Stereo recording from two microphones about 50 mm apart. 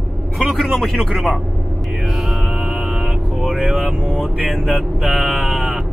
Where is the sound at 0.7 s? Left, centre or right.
Centre.